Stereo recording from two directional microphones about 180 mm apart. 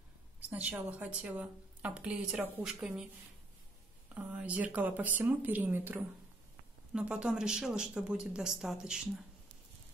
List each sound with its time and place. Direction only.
0.5 s a woman's voice: 10° right (ahead or behind)
4.1 s a woman's voice: 10° right (ahead or behind)